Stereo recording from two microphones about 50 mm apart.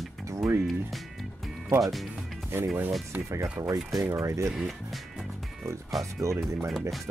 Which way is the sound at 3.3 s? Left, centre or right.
Right.